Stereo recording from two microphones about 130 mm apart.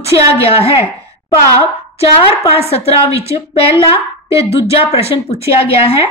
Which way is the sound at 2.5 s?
50° left (ahead or behind).